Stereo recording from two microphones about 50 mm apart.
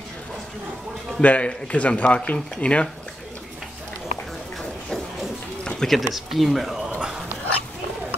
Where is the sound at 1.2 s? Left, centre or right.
Left.